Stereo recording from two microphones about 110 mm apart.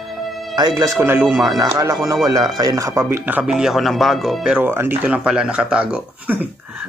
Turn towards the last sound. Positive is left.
turn(degrees=-15)  # may be behind; listen again after turning